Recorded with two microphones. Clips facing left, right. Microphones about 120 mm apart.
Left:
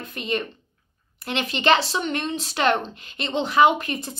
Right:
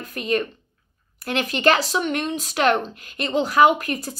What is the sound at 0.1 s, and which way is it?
A woman's voice, 40° right (ahead or behind).